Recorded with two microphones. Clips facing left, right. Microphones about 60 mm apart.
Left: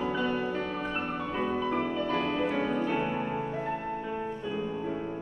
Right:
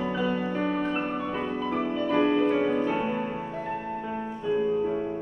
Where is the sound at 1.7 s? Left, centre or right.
Centre.